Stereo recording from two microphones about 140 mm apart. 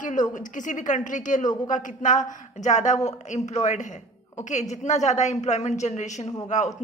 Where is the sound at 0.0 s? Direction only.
65° left (ahead or behind).